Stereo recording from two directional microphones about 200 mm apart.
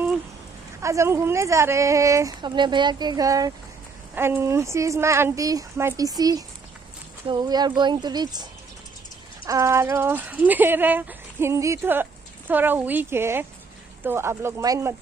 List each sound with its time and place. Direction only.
0.7 s speech: 15° right (ahead or behind)
9.5 s speech: 15° right (ahead or behind)